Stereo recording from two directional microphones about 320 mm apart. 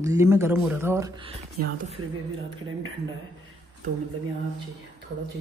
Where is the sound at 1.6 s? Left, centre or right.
Right.